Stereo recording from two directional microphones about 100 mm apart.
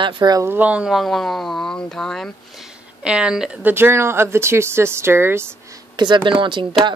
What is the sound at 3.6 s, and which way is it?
Speech, 20° right (ahead or behind).